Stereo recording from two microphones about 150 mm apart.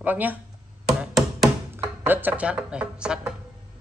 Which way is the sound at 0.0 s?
10° right (ahead or behind).